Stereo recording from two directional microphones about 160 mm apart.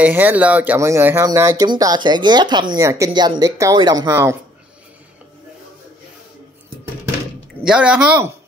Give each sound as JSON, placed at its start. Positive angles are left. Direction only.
{"t": 0.0, "sound": "speech", "side_deg": -10}
{"t": 7.6, "sound": "speech", "side_deg": -5}